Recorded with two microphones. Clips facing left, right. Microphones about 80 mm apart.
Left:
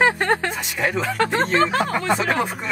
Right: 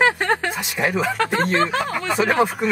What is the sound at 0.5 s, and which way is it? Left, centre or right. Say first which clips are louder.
Speech: right 1 dB; centre.